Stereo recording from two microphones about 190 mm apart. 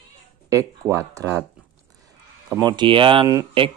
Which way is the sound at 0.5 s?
15° right (ahead or behind).